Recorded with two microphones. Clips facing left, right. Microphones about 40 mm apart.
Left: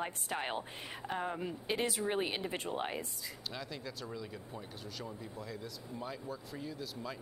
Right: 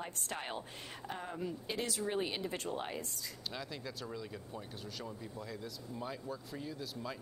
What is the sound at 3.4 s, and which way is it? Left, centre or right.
Speech, centre.